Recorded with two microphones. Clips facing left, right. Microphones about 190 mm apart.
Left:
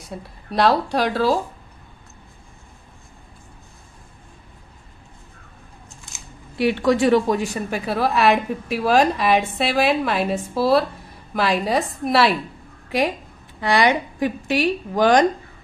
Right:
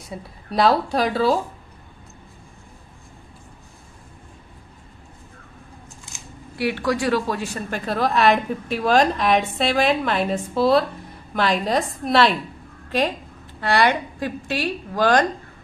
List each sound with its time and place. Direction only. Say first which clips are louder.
0.1 s a woman's voice: even; centre (ahead or behind)
6.6 s a woman's voice: left 5 dB; 20° left (ahead or behind); by 12.4 s 5° left (ahead or behind)
13.6 s a woman's voice: left 1 dB; 15° left (ahead or behind)